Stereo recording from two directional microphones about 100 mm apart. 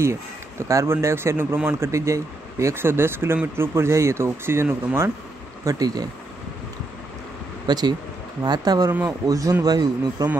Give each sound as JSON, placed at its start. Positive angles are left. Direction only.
{"t": 0.0, "sound": "speech", "side_deg": -30}
{"t": 5.7, "sound": "a man's voice", "side_deg": -40}
{"t": 7.6, "sound": "a man's voice", "side_deg": -45}